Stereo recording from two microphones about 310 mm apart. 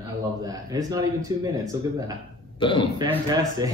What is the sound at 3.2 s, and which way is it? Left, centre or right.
Speech, centre.